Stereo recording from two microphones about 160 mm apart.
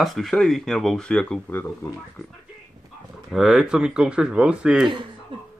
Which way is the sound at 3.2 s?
5° right (ahead or behind).